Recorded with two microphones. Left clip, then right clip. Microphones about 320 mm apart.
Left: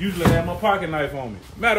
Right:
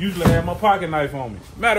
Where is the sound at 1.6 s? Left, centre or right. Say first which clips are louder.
Right 1 dB; right.